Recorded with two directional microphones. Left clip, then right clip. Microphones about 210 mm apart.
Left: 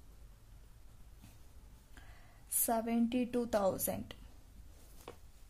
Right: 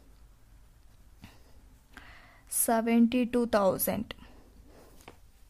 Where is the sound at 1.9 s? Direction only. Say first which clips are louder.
Right 10 dB; 30° right (ahead or behind).